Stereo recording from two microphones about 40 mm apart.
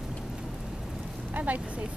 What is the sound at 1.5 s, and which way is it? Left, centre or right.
Speech, right.